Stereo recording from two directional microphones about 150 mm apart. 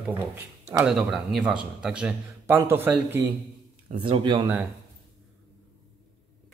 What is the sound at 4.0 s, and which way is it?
Speech, 30° right (ahead or behind).